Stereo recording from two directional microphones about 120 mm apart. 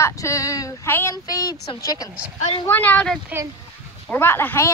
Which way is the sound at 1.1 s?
30° left (ahead or behind).